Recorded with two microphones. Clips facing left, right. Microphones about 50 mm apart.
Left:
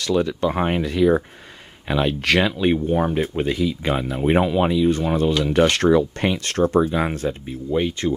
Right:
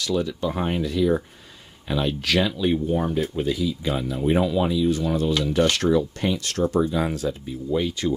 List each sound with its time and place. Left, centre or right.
0.0 s speech: left